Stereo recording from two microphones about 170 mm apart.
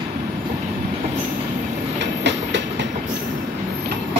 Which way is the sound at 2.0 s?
90° right.